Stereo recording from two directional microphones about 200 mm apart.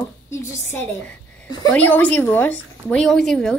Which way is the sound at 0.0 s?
10° left (ahead or behind).